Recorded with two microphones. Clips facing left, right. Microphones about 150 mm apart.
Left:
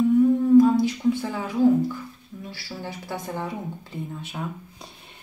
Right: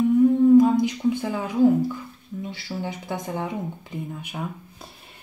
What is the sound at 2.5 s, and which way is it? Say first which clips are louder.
Speech: right 2 dB; 20° right (ahead or behind).